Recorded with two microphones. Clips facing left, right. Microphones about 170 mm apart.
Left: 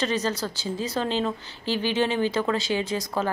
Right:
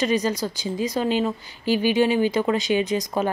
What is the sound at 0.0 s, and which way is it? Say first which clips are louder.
A woman's voice: right 4 dB; 10° right (ahead or behind).